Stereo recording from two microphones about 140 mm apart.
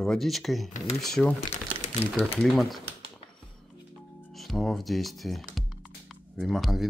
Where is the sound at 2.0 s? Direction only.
45° left (ahead or behind).